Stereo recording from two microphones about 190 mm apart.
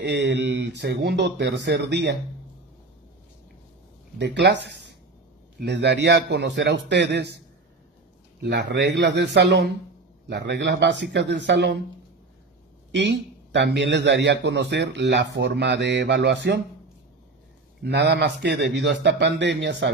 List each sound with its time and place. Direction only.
0.0 s speech: 65° right (ahead or behind)
4.2 s speech: 65° right (ahead or behind)
5.6 s speech: 65° right (ahead or behind)
8.4 s speech: 60° right (ahead or behind)
12.9 s a man's voice: 70° right (ahead or behind)
17.8 s speech: 60° right (ahead or behind)